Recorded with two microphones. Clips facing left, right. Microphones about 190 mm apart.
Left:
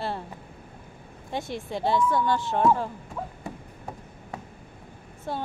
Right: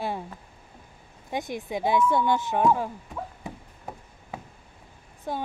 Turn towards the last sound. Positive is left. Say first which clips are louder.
# even
turn(degrees=-15)  # may be behind; listen again after turning